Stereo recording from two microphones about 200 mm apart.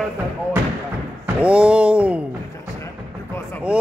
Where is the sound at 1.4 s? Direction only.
5° right (ahead or behind).